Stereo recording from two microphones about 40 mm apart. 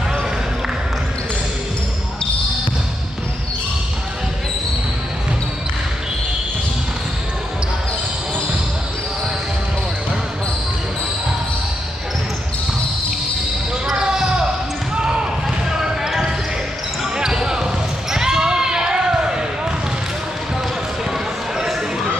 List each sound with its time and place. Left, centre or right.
13.9 s basketball bounce: centre
17.2 s basketball bounce: centre
21.1 s run: centre